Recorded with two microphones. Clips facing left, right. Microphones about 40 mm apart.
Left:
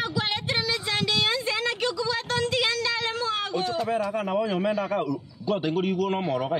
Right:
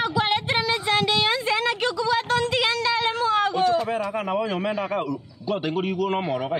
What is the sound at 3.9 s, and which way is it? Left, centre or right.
A man's voice, right.